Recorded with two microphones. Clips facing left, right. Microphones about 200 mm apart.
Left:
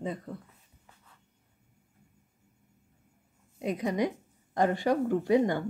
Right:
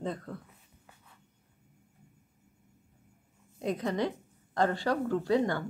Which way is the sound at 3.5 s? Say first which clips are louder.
Left 1 dB; 10° left (ahead or behind).